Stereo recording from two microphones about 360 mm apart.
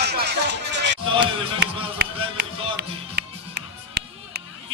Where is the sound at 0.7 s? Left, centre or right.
Right.